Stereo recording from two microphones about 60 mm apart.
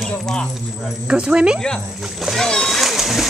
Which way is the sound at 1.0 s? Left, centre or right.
Centre.